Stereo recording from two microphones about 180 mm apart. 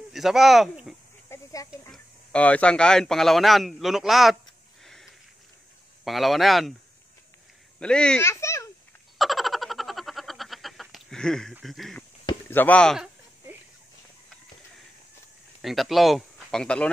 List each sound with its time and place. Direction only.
0.1 s speech: centre (ahead or behind)
1.3 s snake: 20° left (ahead or behind)
1.7 s speech: 5° left (ahead or behind)
6.0 s speech: centre (ahead or behind)
7.8 s a child's voice: 5° left (ahead or behind)
9.2 s a sound: centre (ahead or behind)
11.6 s speech: centre (ahead or behind)
12.4 s a sound: 10° left (ahead or behind)
15.6 s speech: centre (ahead or behind)